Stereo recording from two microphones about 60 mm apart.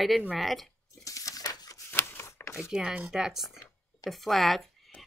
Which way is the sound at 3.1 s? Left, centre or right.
Centre.